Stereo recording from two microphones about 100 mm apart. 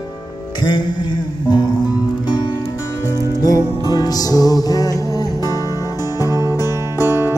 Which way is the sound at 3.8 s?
40° left (ahead or behind).